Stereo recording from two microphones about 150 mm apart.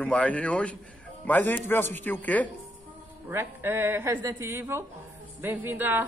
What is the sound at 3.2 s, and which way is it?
Speech, 15° right (ahead or behind).